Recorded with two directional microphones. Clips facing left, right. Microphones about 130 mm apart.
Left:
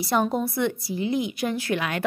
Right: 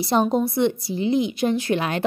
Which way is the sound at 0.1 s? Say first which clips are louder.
Right 4 dB; 25° right (ahead or behind).